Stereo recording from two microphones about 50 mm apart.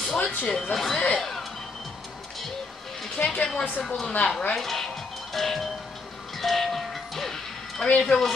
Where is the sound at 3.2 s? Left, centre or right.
Left.